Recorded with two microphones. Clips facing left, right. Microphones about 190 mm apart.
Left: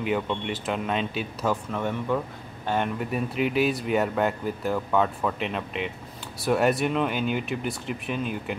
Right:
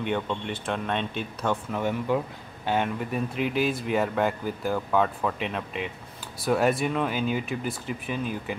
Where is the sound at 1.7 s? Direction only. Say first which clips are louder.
Right 1 dB; 5° right (ahead or behind).